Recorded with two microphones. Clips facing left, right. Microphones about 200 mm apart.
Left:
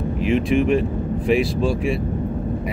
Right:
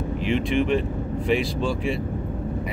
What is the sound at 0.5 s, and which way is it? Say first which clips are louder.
Speech: left 3 dB; 5° left (ahead or behind).